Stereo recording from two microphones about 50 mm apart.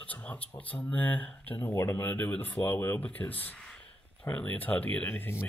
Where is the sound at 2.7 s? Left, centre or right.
Left.